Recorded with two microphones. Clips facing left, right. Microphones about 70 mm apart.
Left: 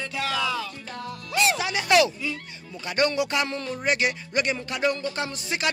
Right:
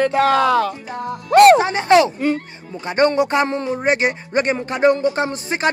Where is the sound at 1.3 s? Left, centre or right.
Right.